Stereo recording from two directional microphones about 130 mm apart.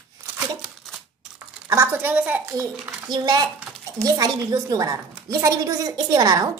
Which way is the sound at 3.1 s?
30° right (ahead or behind).